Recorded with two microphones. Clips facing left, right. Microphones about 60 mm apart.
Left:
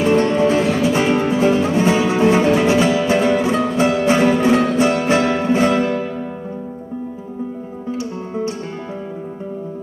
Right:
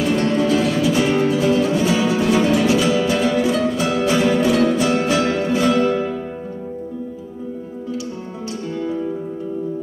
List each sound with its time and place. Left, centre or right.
0.0 s music: left